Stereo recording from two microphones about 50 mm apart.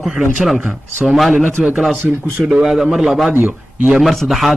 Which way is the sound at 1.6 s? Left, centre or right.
Centre.